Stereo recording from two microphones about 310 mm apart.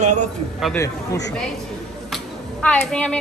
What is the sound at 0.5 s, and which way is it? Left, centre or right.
Speech, centre.